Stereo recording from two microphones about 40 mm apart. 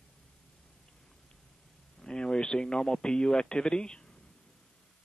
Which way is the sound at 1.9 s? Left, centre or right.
Centre.